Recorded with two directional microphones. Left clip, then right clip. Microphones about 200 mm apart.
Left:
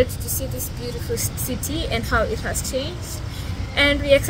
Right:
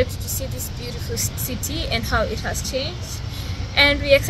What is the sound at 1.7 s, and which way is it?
Speech, 15° left (ahead or behind).